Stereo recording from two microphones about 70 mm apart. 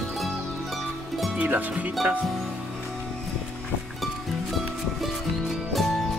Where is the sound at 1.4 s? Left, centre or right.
Right.